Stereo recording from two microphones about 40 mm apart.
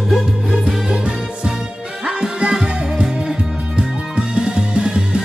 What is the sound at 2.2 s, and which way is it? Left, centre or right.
Music, right.